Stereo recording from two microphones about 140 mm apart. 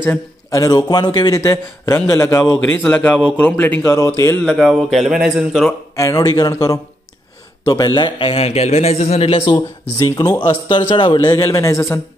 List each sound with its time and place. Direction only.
0.0 s a man's voice: 20° left (ahead or behind)
1.5 s a man's voice: 20° left (ahead or behind)
4.5 s speech: centre (ahead or behind)
5.9 s a man's voice: 25° left (ahead or behind); by 9.6 s 40° left (ahead or behind)
9.6 s a man's voice: 25° left (ahead or behind)
10.9 s a man's voice: 35° left (ahead or behind); by 12.0 s 20° left (ahead or behind)